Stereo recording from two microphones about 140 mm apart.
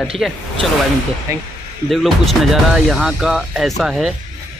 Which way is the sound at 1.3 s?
20° right (ahead or behind).